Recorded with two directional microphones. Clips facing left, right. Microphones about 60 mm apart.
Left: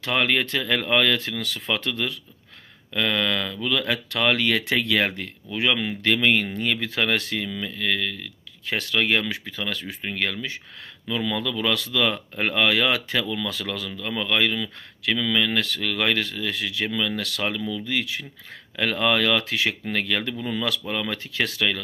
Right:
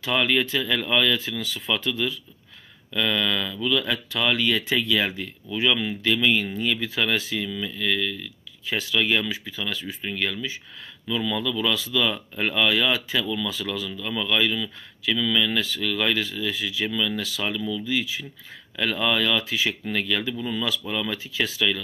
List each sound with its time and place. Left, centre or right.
0.0 s speech: left
2.9 s speech: left
5.6 s speech: left
7.4 s speech: left
11.1 s speech: left
11.7 s speech: left
14.0 s speech: left
15.6 s speech: left
17.8 s speech: left
19.9 s speech: left
20.8 s speech: left
21.1 s speech: left